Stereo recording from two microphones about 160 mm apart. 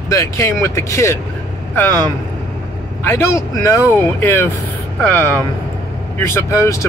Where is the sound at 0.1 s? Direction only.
20° left (ahead or behind).